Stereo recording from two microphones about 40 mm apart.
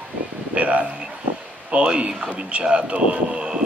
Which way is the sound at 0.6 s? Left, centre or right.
Right.